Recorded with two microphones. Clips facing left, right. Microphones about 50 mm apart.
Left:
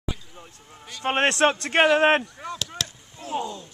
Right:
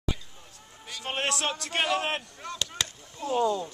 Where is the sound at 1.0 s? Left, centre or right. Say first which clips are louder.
Left 9 dB; left.